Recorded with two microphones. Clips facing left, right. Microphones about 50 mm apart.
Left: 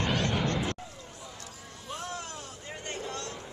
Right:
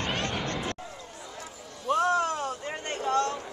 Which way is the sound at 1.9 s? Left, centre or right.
Right.